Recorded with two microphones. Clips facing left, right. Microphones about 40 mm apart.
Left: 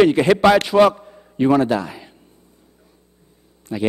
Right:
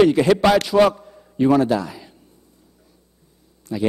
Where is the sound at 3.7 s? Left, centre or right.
Left.